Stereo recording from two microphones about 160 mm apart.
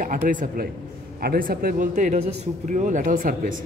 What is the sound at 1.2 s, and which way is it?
Speech, 75° right (ahead or behind).